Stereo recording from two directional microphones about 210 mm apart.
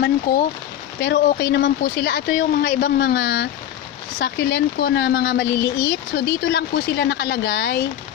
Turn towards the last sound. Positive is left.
turn(degrees=50)  # may be behind; listen again after turning